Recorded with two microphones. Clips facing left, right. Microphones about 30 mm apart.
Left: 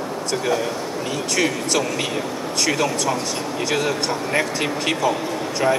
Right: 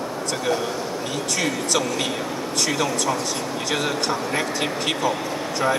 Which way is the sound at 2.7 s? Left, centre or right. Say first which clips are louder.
Left 3 dB; centre.